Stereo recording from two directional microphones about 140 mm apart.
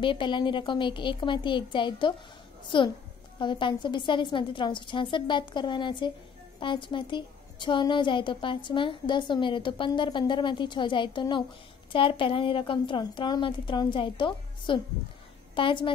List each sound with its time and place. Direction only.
0.0 s a woman's voice: 35° left (ahead or behind)